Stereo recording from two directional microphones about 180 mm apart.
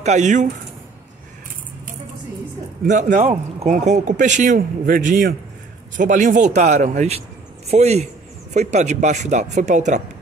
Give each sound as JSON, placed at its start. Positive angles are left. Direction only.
{"t": 0.0, "sound": "speech", "side_deg": -40}
{"t": 2.9, "sound": "speech", "side_deg": -45}